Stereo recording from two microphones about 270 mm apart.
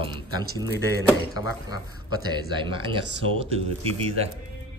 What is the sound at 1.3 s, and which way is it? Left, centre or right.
A man's voice, centre.